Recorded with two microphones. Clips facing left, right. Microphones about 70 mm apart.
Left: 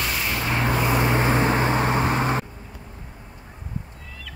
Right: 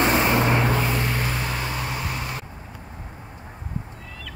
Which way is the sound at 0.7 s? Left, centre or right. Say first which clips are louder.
Left 2 dB; centre.